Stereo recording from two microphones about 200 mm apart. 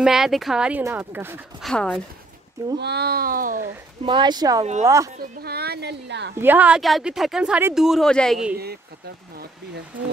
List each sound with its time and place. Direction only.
0.0 s speech: centre (ahead or behind)
1.6 s speech: 5° left (ahead or behind)
2.8 s speech: 55° right (ahead or behind)
4.0 s speech: 25° right (ahead or behind)
5.4 s speech: 50° right (ahead or behind)
6.4 s speech: 10° right (ahead or behind)